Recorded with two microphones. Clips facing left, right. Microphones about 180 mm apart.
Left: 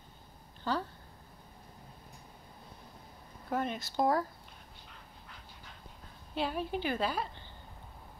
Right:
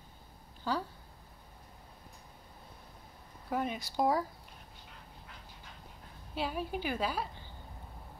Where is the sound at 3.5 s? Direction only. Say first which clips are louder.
Even; 10° right (ahead or behind).